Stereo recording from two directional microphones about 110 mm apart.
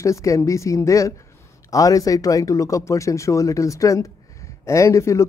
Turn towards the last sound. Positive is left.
turn(degrees=25)  # may be behind; listen again after turning